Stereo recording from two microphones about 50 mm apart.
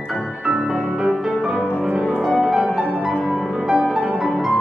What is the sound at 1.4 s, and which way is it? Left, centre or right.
Music, centre.